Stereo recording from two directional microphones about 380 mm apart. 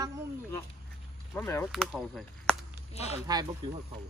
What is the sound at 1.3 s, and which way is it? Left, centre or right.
Speech, centre.